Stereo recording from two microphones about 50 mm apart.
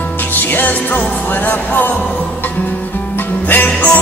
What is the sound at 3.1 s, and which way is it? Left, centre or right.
Music, left.